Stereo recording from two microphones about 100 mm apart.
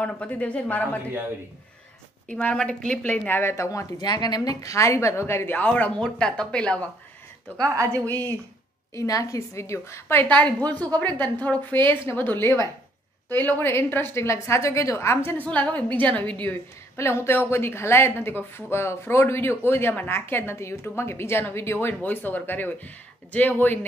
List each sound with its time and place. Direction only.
0.0 s a woman's voice: 15° left (ahead or behind)
2.2 s a woman's voice: 10° left (ahead or behind); by 3.8 s 30° left (ahead or behind)
4.0 s a woman's voice: 45° left (ahead or behind); by 6.8 s 10° left (ahead or behind)
7.5 s a woman's voice: 35° right (ahead or behind)
8.9 s a woman's voice: 35° left (ahead or behind)
15.4 s a woman's voice: 15° left (ahead or behind)
16.9 s a woman's voice: 25° left (ahead or behind)